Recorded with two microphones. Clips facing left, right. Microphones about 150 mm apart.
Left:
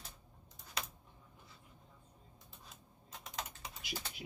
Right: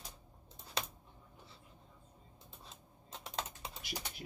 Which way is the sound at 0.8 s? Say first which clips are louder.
Right 3 dB; 30° right (ahead or behind).